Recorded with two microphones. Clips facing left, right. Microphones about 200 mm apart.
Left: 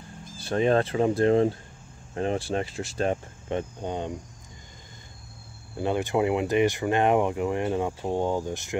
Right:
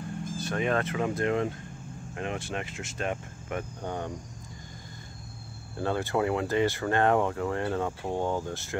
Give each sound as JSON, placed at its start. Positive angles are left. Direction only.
{"t": 0.4, "sound": "speech", "side_deg": 30}
{"t": 5.8, "sound": "speech", "side_deg": 15}